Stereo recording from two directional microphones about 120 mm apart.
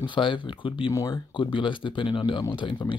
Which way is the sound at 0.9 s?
30° left (ahead or behind).